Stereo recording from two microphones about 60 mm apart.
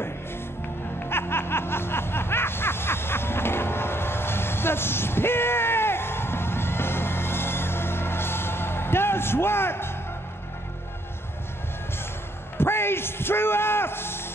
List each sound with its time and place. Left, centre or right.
1.0 s snicker: left
12.5 s a man's voice: left